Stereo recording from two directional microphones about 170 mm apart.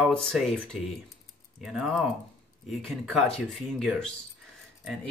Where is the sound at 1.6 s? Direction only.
5° right (ahead or behind).